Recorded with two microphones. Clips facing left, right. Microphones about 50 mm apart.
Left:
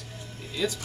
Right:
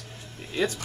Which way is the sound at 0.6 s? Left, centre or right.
Right.